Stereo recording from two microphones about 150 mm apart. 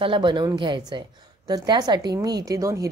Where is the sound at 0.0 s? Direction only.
35° right (ahead or behind).